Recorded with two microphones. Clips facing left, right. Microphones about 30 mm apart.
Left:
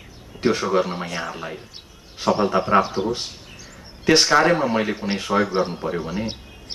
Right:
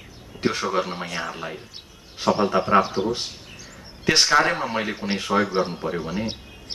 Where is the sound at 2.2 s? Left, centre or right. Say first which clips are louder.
Left 1 dB; right.